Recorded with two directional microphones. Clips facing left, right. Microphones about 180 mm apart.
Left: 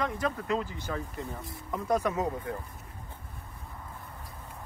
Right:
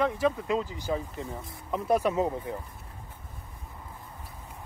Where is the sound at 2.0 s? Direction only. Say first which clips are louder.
Right 3 dB; 30° right (ahead or behind).